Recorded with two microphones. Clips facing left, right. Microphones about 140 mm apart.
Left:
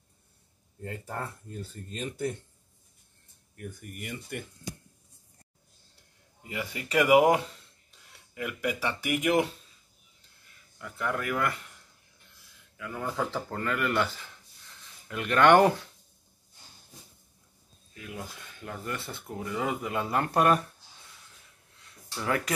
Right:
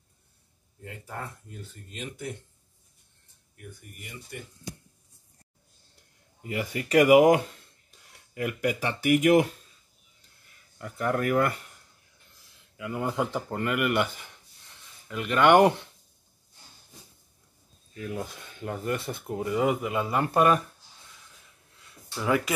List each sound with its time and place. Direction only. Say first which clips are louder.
1.9 s speech: left 3 dB; 35° left (ahead or behind)
3.5 s speech: left 5 dB; 60° left (ahead or behind)
6.4 s speech: right 5 dB; 50° right (ahead or behind)
10.8 s speech: right 5 dB; 45° right (ahead or behind)
12.7 s speech: right 4 dB; 20° right (ahead or behind)
15.0 s speech: even; centre (ahead or behind)
18.6 s speech: right 6 dB; 25° right (ahead or behind); by 20.6 s centre (ahead or behind)
22.2 s speech: right 4 dB; 5° right (ahead or behind)